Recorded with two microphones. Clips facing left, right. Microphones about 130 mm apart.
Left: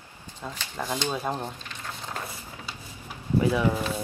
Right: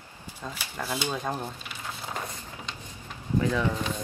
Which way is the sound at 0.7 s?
15° left (ahead or behind).